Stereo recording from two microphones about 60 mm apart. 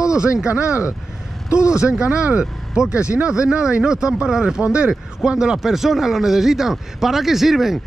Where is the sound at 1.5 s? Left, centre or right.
Left.